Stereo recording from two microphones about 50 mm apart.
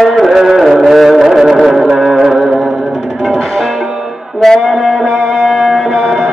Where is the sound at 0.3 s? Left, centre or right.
Centre.